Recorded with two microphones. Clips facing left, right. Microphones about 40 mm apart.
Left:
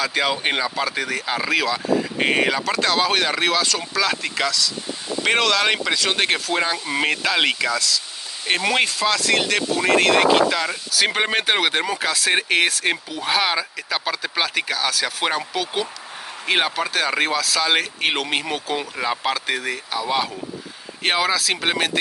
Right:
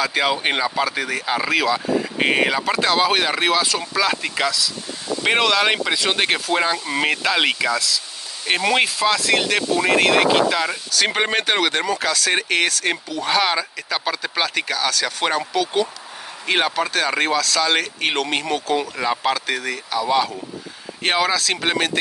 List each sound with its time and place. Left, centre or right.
0.0 s speech: centre